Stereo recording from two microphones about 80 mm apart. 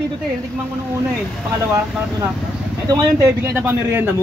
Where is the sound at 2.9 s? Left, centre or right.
Right.